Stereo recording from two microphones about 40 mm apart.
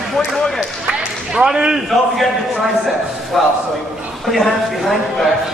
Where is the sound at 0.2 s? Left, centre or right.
Centre.